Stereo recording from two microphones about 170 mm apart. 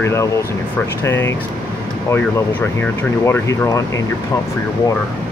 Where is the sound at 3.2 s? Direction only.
15° left (ahead or behind).